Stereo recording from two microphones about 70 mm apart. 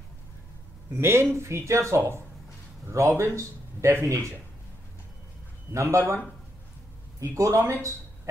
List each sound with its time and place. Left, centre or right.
0.9 s speech: right
5.7 s speech: right
7.2 s speech: right